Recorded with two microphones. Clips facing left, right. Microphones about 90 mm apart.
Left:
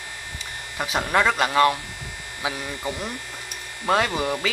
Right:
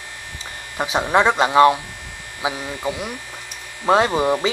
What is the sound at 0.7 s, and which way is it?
Speech, 25° right (ahead or behind).